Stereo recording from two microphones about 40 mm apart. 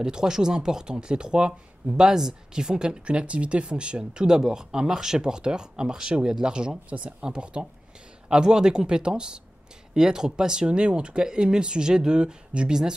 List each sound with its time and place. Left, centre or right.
0.0 s speech: centre
6.9 s speech: right